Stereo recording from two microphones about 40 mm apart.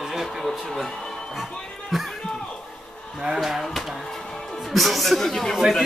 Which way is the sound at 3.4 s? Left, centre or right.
Centre.